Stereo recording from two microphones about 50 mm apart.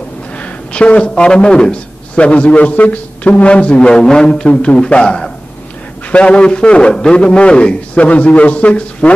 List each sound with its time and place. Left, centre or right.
0.4 s a man's voice: left